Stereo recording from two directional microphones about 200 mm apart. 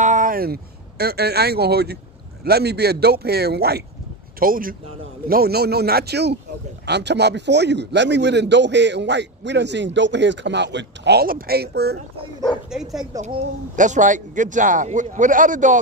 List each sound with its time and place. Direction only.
0.0 s a man's voice: 40° right (ahead or behind)
13.2 s speech: 35° right (ahead or behind)